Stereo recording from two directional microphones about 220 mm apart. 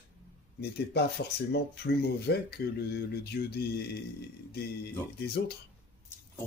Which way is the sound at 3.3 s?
50° left (ahead or behind).